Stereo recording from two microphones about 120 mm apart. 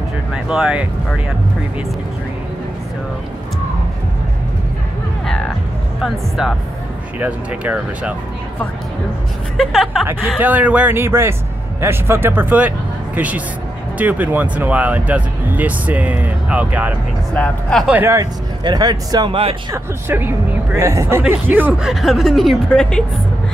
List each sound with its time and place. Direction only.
0.3 s speech: 5° right (ahead or behind)
5.9 s speech: centre (ahead or behind)
9.6 s speech: 5° left (ahead or behind)
10.3 s speech: 15° right (ahead or behind)
17.4 s speech: 5° left (ahead or behind)
17.8 s speech: 15° right (ahead or behind)
18.1 s speech: 35° right (ahead or behind)
19.7 s speech: 20° right (ahead or behind)
21.8 s speech: centre (ahead or behind)